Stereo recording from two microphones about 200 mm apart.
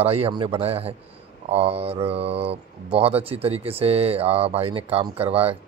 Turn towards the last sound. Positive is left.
turn(degrees=-30)  # may be behind; listen again after turning